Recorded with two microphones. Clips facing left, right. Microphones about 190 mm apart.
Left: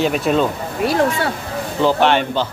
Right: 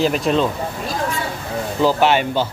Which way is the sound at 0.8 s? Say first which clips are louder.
Left 10 dB; 70° left (ahead or behind).